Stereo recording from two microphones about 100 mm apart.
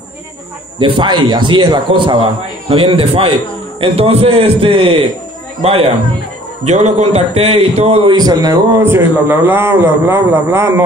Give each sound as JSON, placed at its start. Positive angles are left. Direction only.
{"t": 0.7, "sound": "a man's voice", "side_deg": -55}
{"t": 3.8, "sound": "a man's voice", "side_deg": -85}
{"t": 6.6, "sound": "a man's voice", "side_deg": -90}
{"t": 8.1, "sound": "a man's voice", "side_deg": -45}
{"t": 8.7, "sound": "a man's voice", "side_deg": -25}